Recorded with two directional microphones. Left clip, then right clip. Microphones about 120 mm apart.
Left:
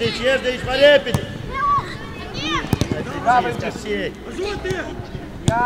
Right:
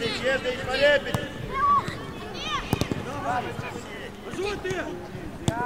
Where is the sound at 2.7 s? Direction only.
10° left (ahead or behind).